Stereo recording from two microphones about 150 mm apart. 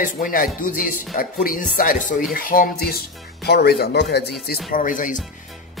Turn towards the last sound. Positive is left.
turn(degrees=60)  # may be behind; listen again after turning